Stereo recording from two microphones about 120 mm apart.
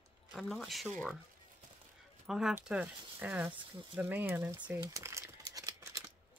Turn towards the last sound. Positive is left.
turn(degrees=-25)  # may be behind; listen again after turning